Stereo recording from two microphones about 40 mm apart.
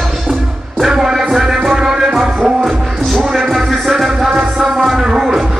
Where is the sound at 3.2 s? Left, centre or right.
Centre.